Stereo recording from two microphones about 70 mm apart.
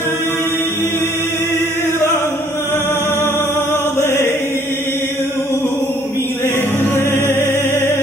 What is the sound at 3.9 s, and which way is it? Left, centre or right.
Chant, left.